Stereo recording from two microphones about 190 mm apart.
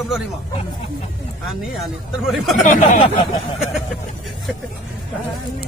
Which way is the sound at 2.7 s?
40° left (ahead or behind).